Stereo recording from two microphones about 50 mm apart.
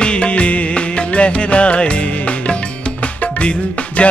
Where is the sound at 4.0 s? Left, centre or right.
Left.